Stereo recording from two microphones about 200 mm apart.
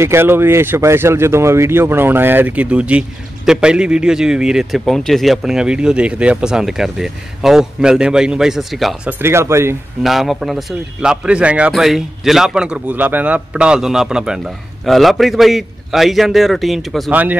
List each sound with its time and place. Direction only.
0.0 s speech: 10° right (ahead or behind)
9.2 s speech: 15° right (ahead or behind)
10.0 s speech: centre (ahead or behind)